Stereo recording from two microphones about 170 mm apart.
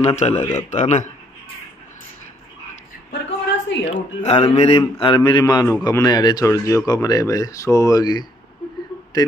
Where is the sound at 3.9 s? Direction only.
35° left (ahead or behind).